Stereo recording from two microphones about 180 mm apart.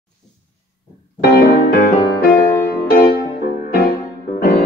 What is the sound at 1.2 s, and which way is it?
Music, 60° left (ahead or behind).